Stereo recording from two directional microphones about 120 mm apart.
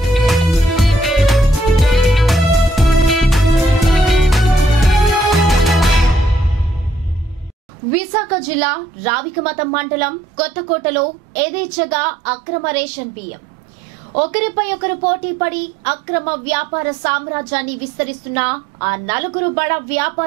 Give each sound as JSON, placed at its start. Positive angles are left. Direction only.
{"t": 0.0, "sound": "music", "side_deg": 0}
{"t": 7.9, "sound": "a woman's voice", "side_deg": -10}
{"t": 14.1, "sound": "a woman's voice", "side_deg": -10}